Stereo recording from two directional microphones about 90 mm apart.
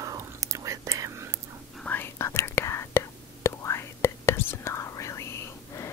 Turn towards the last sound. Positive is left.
turn(degrees=30)  # may be behind; listen again after turning